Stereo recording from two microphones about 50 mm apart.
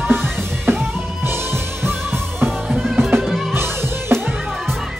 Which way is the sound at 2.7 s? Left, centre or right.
Centre.